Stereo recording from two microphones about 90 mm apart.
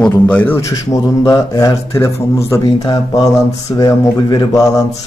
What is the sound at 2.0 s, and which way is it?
Speech, 35° left (ahead or behind).